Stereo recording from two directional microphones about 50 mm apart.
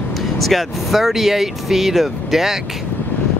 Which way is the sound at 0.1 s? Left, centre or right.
Centre.